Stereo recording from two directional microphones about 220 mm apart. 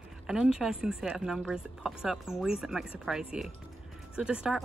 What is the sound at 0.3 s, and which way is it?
Speech, 5° right (ahead or behind).